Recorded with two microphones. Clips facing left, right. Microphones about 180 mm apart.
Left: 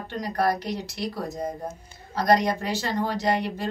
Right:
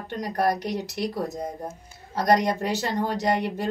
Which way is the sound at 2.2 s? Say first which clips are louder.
Even; 20° right (ahead or behind).